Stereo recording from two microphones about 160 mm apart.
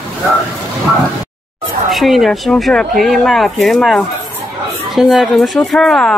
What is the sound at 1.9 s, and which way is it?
Speech, centre (ahead or behind).